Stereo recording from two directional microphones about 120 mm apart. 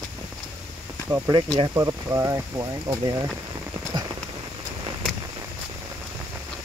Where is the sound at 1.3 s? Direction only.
35° right (ahead or behind).